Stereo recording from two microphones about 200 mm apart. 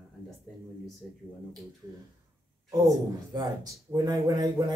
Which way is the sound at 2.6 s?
20° right (ahead or behind).